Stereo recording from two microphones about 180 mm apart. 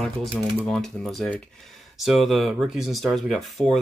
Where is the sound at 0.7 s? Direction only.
Centre (ahead or behind).